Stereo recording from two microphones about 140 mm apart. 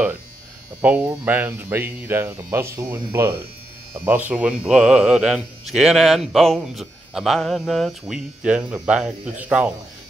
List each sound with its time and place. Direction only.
0.7 s speech: 10° right (ahead or behind)